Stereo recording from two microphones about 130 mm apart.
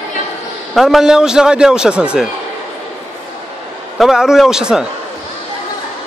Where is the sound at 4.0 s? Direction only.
5° right (ahead or behind).